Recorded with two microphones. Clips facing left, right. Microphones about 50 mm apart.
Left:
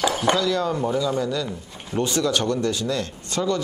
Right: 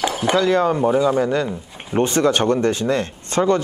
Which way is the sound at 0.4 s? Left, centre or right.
Right.